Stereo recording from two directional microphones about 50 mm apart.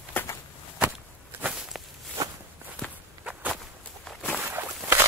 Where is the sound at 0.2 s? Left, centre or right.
Left.